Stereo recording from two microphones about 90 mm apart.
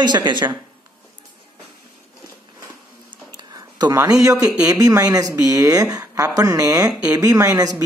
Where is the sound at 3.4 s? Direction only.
45° right (ahead or behind).